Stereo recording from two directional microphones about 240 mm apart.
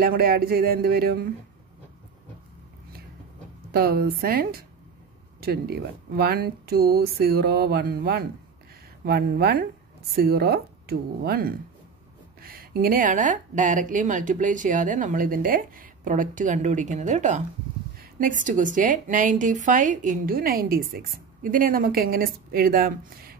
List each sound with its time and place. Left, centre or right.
0.0 s a woman's voice: right
3.7 s a woman's voice: right